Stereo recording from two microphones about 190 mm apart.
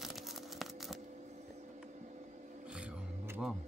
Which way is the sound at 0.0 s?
Centre (ahead or behind).